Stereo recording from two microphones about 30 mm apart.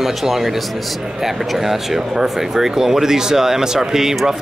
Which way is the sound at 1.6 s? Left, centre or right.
Centre.